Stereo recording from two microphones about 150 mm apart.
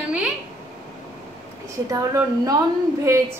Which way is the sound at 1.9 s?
25° right (ahead or behind).